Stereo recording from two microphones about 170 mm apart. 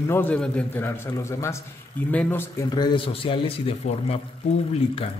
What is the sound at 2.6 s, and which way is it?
Speech, 25° left (ahead or behind).